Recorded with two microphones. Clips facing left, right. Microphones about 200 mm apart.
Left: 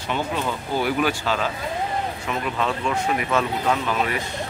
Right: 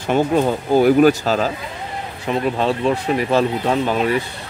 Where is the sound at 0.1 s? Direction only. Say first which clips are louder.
Right 9 dB; 45° right (ahead or behind).